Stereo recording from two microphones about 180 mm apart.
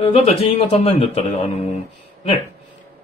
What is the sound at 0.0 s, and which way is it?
Speech, 30° left (ahead or behind).